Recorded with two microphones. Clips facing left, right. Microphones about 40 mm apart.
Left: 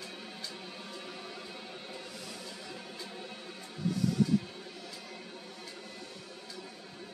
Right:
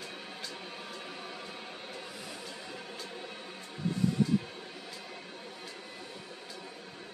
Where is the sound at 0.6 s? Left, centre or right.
Centre.